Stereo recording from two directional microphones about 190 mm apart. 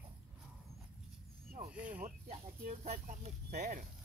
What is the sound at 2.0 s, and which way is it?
Speech, 40° right (ahead or behind).